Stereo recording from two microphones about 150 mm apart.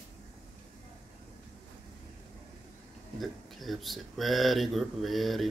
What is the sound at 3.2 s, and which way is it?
Speech, centre (ahead or behind).